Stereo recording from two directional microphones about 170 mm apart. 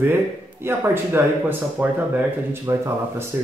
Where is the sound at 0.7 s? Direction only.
10° right (ahead or behind).